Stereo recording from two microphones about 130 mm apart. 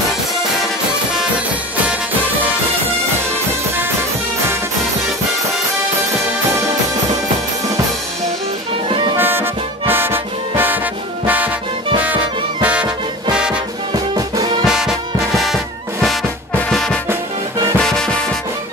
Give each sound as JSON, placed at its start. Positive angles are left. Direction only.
{"t": 9.1, "sound": "music", "side_deg": -15}
{"t": 12.6, "sound": "music", "side_deg": -10}
{"t": 13.9, "sound": "music", "side_deg": -30}
{"t": 14.6, "sound": "music", "side_deg": -5}